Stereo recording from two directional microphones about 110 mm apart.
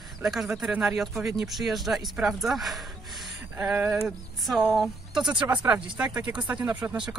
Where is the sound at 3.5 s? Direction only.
20° right (ahead or behind).